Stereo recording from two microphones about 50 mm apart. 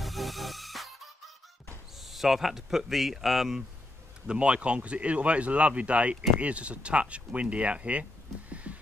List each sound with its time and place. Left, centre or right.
0.0 s music: centre
2.0 s speech: centre
4.3 s speech: right